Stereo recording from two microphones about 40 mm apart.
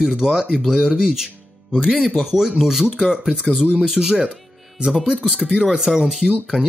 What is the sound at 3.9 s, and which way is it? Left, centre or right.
Speech, centre.